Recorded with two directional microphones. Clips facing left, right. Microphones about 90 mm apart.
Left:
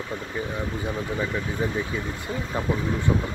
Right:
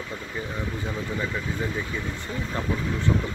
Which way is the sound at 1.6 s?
15° left (ahead or behind).